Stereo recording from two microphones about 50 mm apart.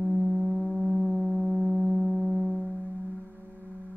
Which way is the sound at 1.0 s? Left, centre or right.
Centre.